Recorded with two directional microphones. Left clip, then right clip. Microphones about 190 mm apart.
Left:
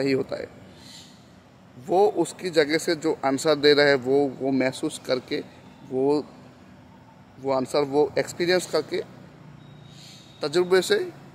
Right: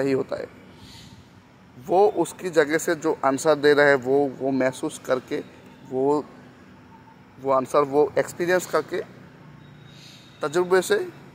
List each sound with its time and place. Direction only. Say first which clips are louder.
0.0 s speech: right 1 dB; 15° left (ahead or behind)
1.9 s speech: right 2 dB; 10° left (ahead or behind)
7.4 s speech: right 3 dB; 10° left (ahead or behind)
10.4 s speech: even; 15° left (ahead or behind)